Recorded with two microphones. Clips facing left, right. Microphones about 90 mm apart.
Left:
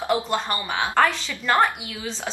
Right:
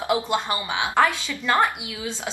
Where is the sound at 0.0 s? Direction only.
15° right (ahead or behind).